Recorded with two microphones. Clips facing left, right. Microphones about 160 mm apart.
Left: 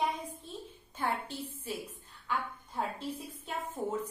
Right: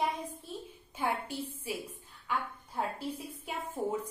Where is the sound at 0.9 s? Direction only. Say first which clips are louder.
Right 1 dB; 10° right (ahead or behind).